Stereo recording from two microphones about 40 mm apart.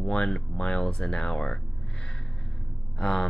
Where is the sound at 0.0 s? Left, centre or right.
Left.